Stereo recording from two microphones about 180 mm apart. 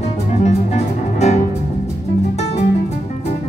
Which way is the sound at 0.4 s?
40° left (ahead or behind).